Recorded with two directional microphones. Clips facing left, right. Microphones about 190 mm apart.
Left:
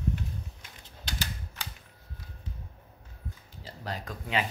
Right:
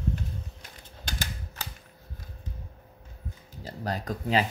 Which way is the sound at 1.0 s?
50° right (ahead or behind).